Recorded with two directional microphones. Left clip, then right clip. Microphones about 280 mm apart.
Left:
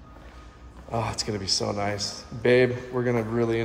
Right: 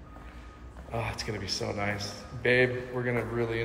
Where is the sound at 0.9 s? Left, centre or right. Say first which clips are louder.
Left 5 dB; left.